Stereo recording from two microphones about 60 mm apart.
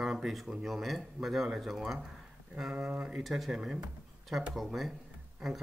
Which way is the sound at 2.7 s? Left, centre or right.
Centre.